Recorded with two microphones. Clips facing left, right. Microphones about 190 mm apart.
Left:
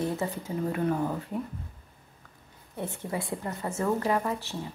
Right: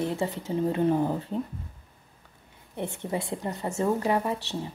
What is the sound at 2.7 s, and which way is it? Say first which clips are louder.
A woman's voice: right 2 dB; 20° right (ahead or behind).